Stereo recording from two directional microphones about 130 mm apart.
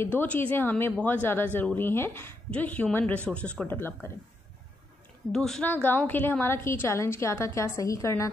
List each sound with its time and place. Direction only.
0.0 s a woman's voice: 15° left (ahead or behind)
5.3 s a woman's voice: 5° left (ahead or behind); by 8.3 s 25° left (ahead or behind)